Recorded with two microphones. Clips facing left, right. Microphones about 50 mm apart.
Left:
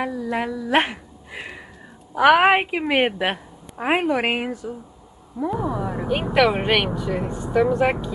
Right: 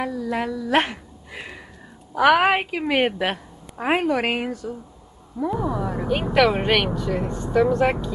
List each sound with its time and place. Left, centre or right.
0.0 s speech: centre